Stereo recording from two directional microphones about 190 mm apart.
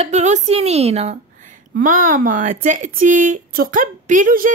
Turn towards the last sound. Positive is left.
turn(degrees=-45)  # may be behind; listen again after turning